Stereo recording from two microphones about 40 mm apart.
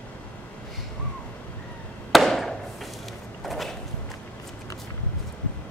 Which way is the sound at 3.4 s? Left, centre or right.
Centre.